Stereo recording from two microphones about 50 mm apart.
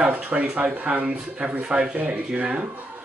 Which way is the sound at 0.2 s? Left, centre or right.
Right.